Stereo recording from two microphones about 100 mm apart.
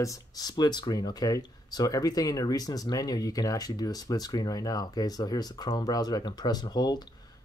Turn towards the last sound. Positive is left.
turn(degrees=45)  # may be behind; listen again after turning